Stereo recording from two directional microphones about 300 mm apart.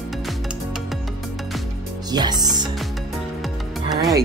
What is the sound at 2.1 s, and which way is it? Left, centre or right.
Speech, centre.